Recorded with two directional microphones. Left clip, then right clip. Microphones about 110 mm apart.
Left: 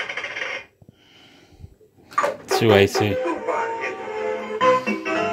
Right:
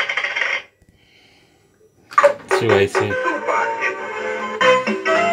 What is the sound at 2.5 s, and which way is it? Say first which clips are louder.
Speech: right 1 dB; 50° left (ahead or behind).